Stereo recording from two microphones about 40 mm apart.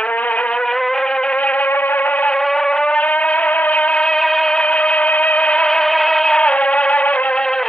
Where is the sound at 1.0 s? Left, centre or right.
Left.